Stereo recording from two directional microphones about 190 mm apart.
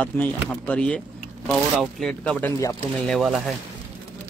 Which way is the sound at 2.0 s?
5° left (ahead or behind).